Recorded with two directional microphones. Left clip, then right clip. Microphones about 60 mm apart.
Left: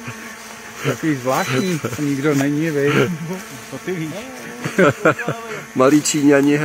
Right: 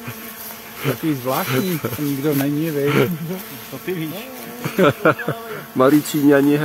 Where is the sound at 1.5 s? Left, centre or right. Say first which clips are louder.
Left 1 dB; centre.